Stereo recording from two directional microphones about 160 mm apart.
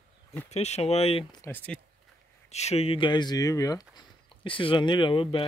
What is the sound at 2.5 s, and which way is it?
Speech, 40° left (ahead or behind).